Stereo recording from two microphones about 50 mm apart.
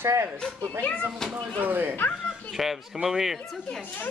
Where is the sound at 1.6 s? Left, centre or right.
Right.